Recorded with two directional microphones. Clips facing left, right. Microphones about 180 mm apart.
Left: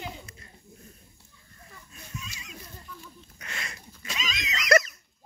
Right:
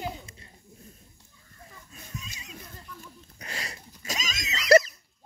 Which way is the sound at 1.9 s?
35° right (ahead or behind).